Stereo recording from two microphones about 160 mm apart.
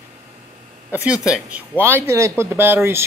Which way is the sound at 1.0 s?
5° right (ahead or behind).